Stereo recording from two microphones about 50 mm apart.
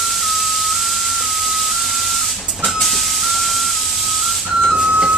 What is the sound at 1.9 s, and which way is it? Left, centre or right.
Printer, centre.